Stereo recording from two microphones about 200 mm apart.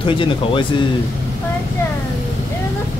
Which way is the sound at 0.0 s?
25° left (ahead or behind).